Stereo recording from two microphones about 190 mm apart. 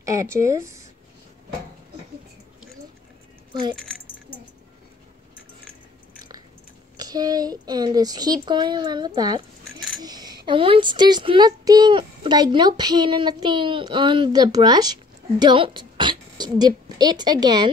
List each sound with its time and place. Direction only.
0.0 s speech: 15° right (ahead or behind)
3.7 s keys jangling: 5° left (ahead or behind)
7.0 s speech: 20° right (ahead or behind)